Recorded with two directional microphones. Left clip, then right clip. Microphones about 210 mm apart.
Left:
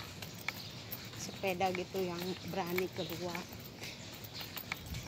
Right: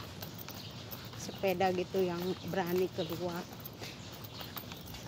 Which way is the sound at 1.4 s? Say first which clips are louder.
Right 3 dB; 25° right (ahead or behind).